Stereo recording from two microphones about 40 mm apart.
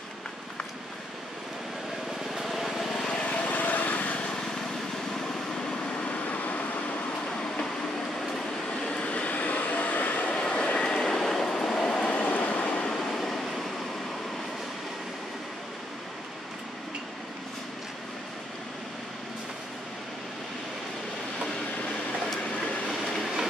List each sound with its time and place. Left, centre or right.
2.3 s vehicle: centre
3.2 s vehicle: left
3.4 s vehicle: left
6.2 s vehicle: left
8.8 s vehicle: left
10.3 s vehicle: left
10.9 s train: centre
12.0 s train: left
13.1 s train: centre